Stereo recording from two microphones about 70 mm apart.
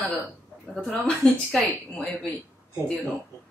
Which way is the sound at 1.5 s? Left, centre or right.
Centre.